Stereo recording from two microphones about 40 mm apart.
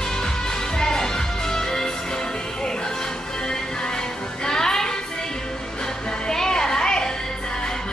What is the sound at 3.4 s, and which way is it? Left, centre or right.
Music, centre.